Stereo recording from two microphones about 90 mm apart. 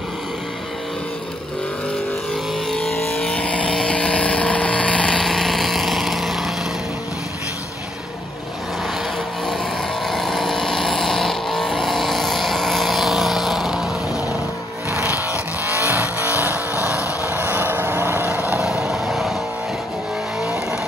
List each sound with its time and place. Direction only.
2.7 s vehicle: 5° left (ahead or behind)
3.3 s vehicle: 15° left (ahead or behind); by 6.5 s centre (ahead or behind)
10.0 s vehicle: centre (ahead or behind)
14.9 s a sound: 30° right (ahead or behind)
17.3 s vehicle: 20° right (ahead or behind)
18.6 s vehicle: 5° right (ahead or behind)